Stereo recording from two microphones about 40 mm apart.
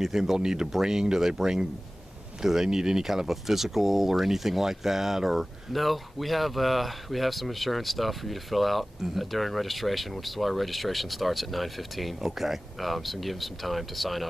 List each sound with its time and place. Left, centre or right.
0.0 s speech: centre